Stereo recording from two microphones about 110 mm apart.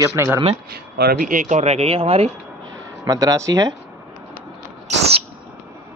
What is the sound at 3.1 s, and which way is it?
Speech, 35° right (ahead or behind).